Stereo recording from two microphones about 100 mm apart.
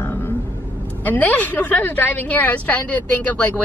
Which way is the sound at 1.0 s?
15° left (ahead or behind).